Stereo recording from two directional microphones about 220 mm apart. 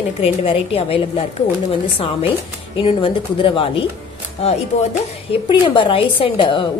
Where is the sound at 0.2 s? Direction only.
25° left (ahead or behind).